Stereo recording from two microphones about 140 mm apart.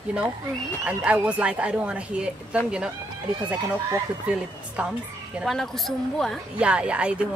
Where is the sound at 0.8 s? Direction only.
10° right (ahead or behind).